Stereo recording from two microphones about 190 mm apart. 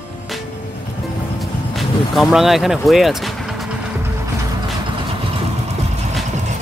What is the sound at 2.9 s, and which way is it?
Vehicle, centre (ahead or behind).